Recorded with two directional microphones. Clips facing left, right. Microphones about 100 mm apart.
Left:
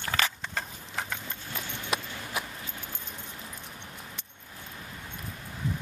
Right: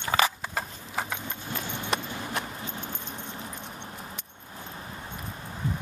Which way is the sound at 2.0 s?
25° right (ahead or behind).